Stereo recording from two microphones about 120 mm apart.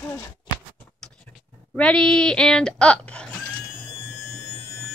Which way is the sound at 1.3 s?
15° left (ahead or behind).